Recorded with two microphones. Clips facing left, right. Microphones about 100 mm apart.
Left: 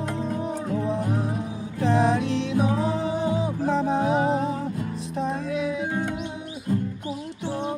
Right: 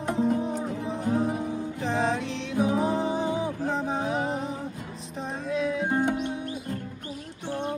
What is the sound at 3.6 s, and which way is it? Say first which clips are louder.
Music: left 9 dB; 65° left (ahead or behind).